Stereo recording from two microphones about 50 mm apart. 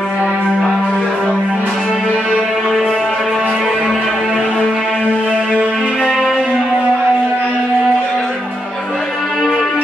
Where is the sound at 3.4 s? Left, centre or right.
Centre.